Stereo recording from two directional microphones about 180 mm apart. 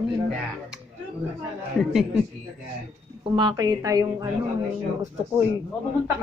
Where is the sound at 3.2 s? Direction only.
25° right (ahead or behind).